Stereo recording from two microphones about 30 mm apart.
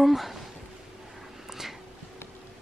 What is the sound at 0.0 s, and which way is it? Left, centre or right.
Speech, centre.